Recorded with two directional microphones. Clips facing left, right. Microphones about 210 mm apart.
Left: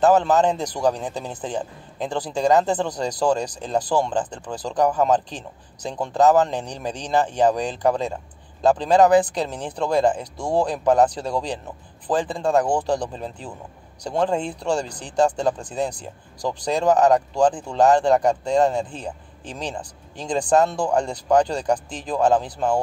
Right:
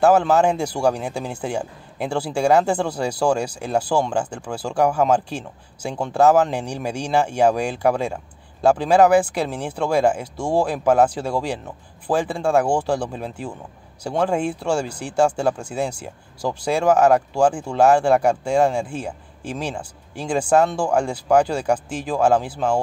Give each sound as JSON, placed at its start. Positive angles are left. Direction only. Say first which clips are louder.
{"t": 0.0, "sound": "speech", "louder": "right 1 dB", "side_deg": -10}